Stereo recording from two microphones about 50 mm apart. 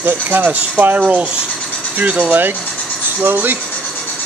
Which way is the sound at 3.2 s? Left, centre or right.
Right.